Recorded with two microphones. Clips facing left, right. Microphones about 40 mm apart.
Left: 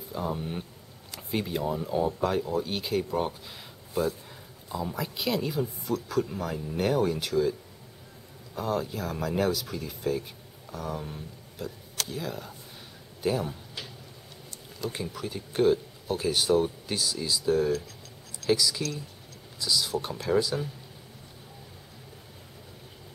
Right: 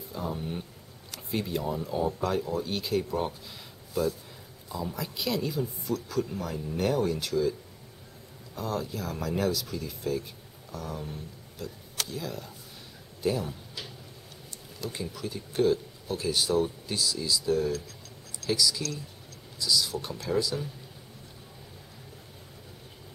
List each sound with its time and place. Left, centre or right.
0.1 s speech: centre
8.5 s speech: centre
14.9 s speech: left